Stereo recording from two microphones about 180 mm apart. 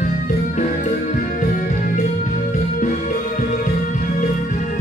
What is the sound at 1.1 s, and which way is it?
Music, 45° left (ahead or behind).